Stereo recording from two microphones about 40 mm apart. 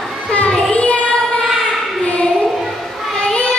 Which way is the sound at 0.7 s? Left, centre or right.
Left.